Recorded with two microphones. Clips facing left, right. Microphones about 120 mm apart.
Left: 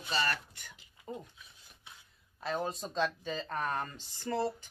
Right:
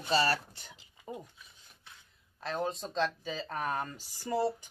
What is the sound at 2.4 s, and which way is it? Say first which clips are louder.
Speech: right 1 dB; centre (ahead or behind).